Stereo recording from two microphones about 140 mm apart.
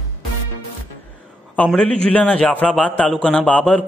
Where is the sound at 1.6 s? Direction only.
5° left (ahead or behind).